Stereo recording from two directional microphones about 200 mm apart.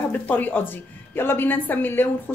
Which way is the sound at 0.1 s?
10° left (ahead or behind).